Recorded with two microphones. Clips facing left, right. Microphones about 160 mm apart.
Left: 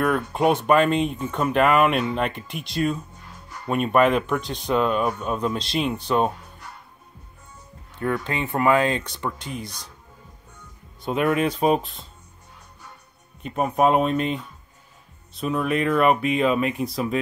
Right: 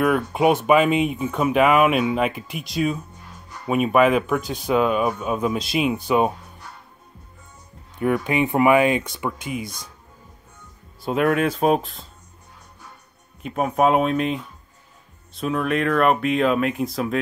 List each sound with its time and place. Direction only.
0.0 s speech: 5° right (ahead or behind)
8.0 s speech: 15° right (ahead or behind)
11.0 s speech: centre (ahead or behind)
13.4 s speech: centre (ahead or behind)